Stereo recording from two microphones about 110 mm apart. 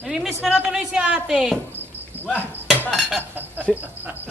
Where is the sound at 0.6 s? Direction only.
5° right (ahead or behind).